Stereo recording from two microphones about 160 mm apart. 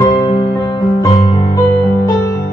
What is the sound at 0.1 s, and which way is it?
Music, 25° left (ahead or behind).